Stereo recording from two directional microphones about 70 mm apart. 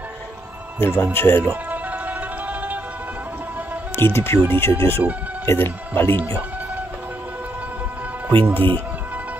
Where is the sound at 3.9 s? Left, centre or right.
Left.